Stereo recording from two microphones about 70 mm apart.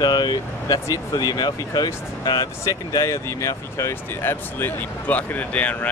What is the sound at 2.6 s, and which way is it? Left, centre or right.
Speech, left.